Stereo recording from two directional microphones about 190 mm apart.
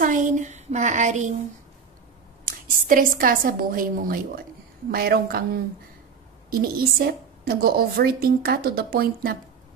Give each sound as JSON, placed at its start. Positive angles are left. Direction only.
{"t": 0.0, "sound": "speech", "side_deg": -45}
{"t": 2.4, "sound": "a woman's voice", "side_deg": -45}